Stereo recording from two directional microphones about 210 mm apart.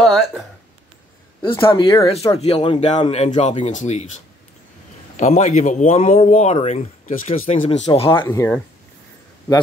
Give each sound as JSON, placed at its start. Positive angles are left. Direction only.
{"t": 0.0, "sound": "a sound", "side_deg": 0}
{"t": 1.6, "sound": "speech", "side_deg": 20}
{"t": 2.3, "sound": "a man's voice", "side_deg": 30}
{"t": 8.3, "sound": "speech", "side_deg": 10}